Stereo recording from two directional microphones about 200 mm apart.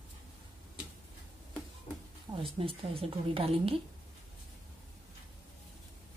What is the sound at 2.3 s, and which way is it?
A woman's voice, 25° right (ahead or behind).